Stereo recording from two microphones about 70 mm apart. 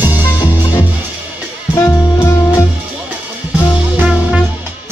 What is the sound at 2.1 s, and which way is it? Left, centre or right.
Music, left.